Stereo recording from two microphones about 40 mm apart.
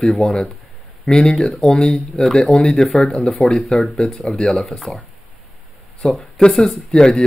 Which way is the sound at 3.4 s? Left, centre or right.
Left.